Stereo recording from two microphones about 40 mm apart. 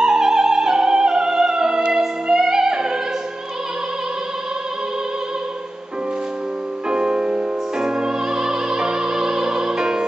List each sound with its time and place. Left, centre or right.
0.0 s music: centre
6.9 s music: right